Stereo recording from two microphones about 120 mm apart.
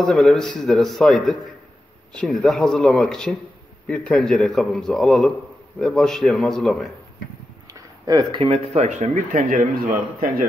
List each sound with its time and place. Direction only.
0.0 s a man's voice: 5° left (ahead or behind)
8.1 s speech: 35° right (ahead or behind)
8.7 s speech: 80° right